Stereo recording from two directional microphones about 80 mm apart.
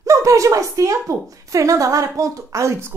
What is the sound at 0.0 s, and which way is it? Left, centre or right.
A woman's voice, right.